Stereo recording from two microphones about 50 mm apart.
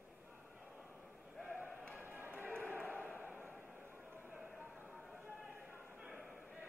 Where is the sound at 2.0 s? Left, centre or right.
Right.